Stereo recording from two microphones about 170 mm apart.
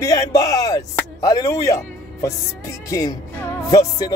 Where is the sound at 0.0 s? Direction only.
20° left (ahead or behind).